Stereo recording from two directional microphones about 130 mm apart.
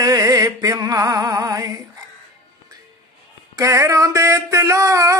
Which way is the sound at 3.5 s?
25° right (ahead or behind).